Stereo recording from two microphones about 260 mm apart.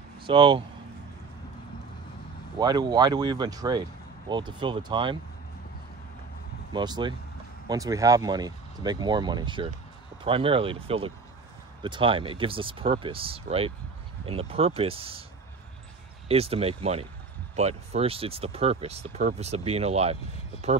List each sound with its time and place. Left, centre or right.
0.2 s speech: centre
2.6 s speech: centre
6.7 s speech: centre
16.3 s speech: right